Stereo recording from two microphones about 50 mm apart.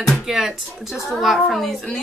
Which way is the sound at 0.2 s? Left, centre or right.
Centre.